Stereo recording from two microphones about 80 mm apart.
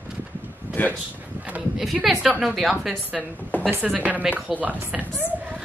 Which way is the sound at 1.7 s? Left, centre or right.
Centre.